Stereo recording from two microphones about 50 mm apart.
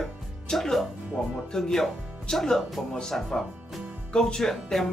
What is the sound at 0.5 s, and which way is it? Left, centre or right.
Speech, centre.